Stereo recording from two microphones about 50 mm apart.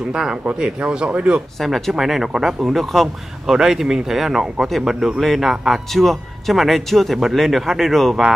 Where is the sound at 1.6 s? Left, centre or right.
Centre.